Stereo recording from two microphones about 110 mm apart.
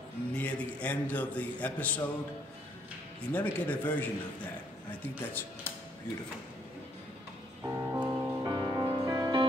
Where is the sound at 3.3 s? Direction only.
15° left (ahead or behind).